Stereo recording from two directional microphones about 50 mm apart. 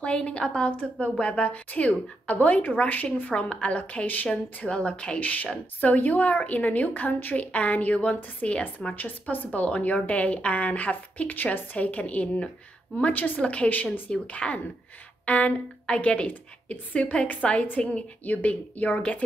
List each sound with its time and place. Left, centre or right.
0.0 s a woman's voice: left
4.6 s a woman's voice: centre